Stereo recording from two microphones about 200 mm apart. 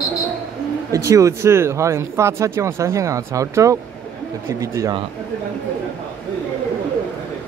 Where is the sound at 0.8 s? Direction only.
15° right (ahead or behind).